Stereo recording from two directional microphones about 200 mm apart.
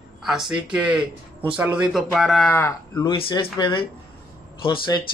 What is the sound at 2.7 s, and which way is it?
Speech, 20° left (ahead or behind).